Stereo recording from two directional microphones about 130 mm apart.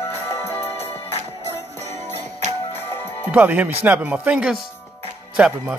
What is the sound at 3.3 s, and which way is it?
Speech, 10° right (ahead or behind).